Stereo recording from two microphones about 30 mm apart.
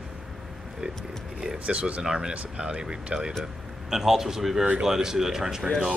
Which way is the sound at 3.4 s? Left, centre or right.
Centre.